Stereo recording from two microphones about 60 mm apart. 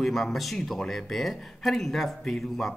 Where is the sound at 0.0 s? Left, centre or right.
Centre.